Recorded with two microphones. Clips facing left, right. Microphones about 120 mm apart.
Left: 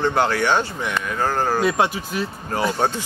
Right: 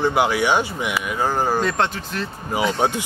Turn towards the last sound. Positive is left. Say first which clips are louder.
# right 1 dB
turn(degrees=-15)  # may be behind; listen again after turning